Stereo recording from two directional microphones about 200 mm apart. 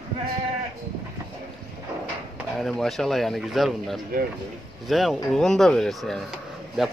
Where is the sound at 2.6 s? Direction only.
Centre (ahead or behind).